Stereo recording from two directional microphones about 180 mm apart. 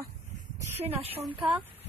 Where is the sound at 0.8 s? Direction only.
30° right (ahead or behind).